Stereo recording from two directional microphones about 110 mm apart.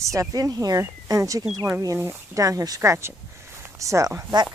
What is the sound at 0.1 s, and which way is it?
Speech, 30° right (ahead or behind).